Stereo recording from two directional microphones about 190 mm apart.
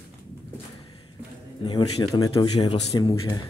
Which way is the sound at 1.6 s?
25° left (ahead or behind).